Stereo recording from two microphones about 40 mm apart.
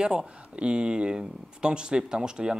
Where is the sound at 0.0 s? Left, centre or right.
Centre.